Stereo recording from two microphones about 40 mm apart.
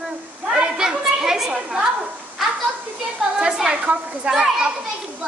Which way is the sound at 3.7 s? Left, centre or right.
Right.